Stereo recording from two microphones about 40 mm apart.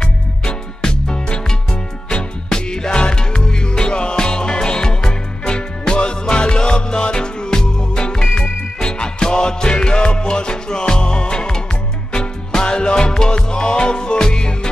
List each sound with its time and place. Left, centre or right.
0.0 s music: centre